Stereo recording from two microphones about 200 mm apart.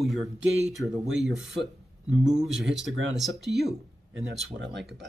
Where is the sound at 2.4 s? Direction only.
Centre (ahead or behind).